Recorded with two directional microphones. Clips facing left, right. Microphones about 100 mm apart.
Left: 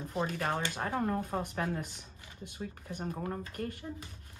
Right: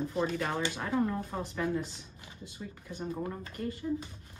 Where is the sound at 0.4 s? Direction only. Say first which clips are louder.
Even; 45° left (ahead or behind).